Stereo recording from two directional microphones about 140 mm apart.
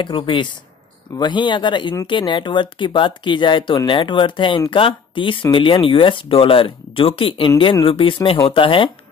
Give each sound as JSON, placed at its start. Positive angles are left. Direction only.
{"t": 0.0, "sound": "speech", "side_deg": 35}